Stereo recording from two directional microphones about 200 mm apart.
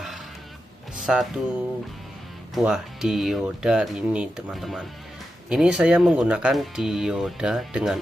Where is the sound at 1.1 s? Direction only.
5° right (ahead or behind).